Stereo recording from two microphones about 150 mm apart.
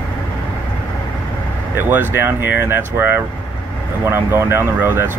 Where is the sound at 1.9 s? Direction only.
15° right (ahead or behind).